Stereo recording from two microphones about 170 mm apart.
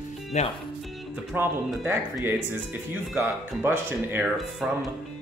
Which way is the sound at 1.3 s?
15° right (ahead or behind).